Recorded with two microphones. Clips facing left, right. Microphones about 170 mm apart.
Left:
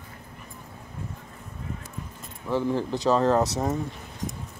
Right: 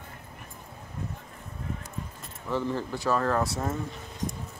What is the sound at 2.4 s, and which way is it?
Speech, 15° left (ahead or behind).